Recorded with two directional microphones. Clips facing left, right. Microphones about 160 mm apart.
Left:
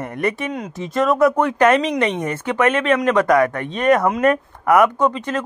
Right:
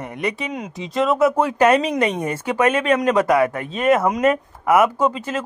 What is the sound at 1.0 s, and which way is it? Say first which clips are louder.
Speech: left 1 dB; centre (ahead or behind).